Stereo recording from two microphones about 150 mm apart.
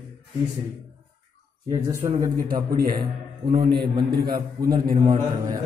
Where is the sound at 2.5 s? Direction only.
70° right (ahead or behind); by 3.6 s 85° right.